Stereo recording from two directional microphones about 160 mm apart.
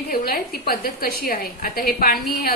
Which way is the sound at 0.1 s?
70° left (ahead or behind).